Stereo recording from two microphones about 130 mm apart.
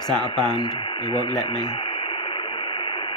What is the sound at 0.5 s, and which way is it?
Speech, 35° left (ahead or behind).